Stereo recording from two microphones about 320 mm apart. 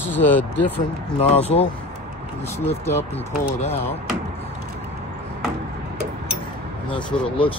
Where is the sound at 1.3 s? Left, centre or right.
Centre.